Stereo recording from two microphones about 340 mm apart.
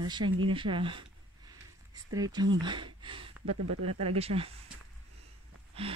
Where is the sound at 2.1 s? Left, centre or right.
Centre.